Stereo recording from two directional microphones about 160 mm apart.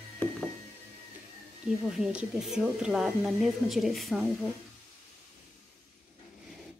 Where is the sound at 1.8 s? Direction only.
5° right (ahead or behind).